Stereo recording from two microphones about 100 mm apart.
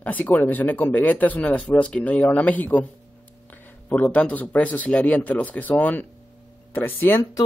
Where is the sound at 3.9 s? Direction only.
15° left (ahead or behind).